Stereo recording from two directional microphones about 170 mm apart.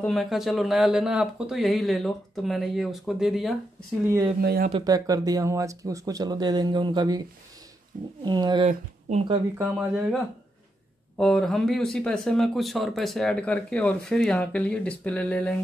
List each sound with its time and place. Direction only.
0.0 s speech: centre (ahead or behind)
4.0 s speech: 15° right (ahead or behind)
4.4 s speech: 65° right (ahead or behind)
4.7 s speech: 20° right (ahead or behind)
9.6 s speech: 10° right (ahead or behind); by 15.6 s 10° left (ahead or behind)